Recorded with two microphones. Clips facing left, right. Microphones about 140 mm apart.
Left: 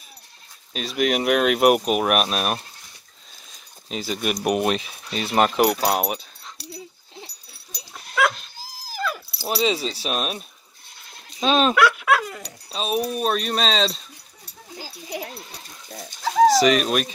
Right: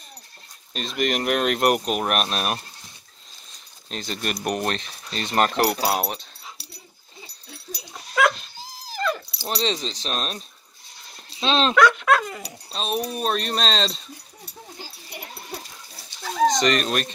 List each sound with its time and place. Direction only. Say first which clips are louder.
0.7 s speech: left 2 dB; centre (ahead or behind)
3.9 s speech: left 4 dB; 5° left (ahead or behind)
5.9 s speech: left 2 dB; 10° left (ahead or behind)
6.6 s dog: left 11 dB; centre (ahead or behind)
11.4 s speech: even; 10° left (ahead or behind)
16.4 s speech: left 2 dB; 5° left (ahead or behind)